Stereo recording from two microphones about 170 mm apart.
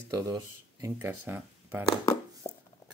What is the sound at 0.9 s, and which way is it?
Speech, 10° right (ahead or behind).